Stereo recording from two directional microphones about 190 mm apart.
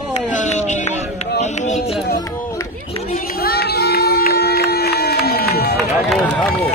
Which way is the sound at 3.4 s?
55° left (ahead or behind).